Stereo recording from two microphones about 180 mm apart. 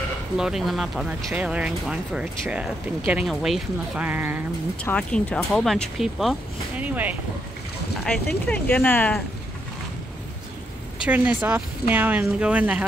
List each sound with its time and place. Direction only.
0.4 s speech: centre (ahead or behind)
4.8 s speech: 5° left (ahead or behind); by 7.2 s 10° right (ahead or behind)
8.5 s speech: 10° left (ahead or behind)
11.1 s speech: 10° right (ahead or behind)